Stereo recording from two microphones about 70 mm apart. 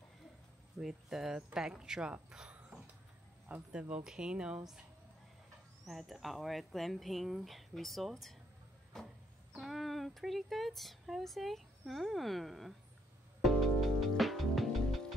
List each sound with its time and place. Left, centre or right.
0.7 s speech: centre
2.3 s a sound: centre
3.4 s speech: right
3.9 s speech: centre
5.9 s speech: centre
8.9 s a sound: centre
9.6 s speech: centre
13.4 s music: centre